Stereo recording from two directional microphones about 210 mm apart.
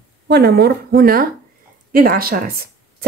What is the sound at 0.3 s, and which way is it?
Speech, 50° right (ahead or behind).